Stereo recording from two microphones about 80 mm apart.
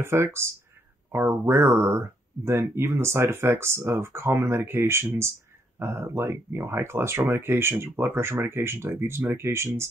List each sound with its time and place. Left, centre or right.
0.0 s speech: right